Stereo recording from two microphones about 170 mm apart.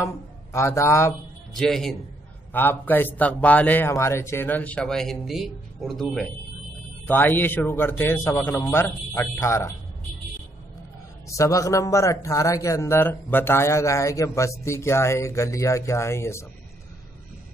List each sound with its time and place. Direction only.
0.0 s a man's voice: 15° left (ahead or behind)
1.5 s a man's voice: centre (ahead or behind)
7.1 s speech: 10° left (ahead or behind)
11.2 s speech: 20° left (ahead or behind)